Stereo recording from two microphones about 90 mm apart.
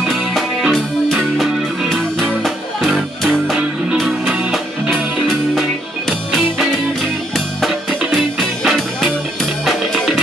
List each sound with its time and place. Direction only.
0.0 s music: centre (ahead or behind)